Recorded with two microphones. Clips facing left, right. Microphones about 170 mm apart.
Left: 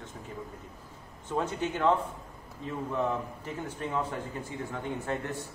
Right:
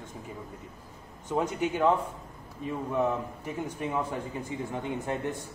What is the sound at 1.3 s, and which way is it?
Speech, 10° right (ahead or behind).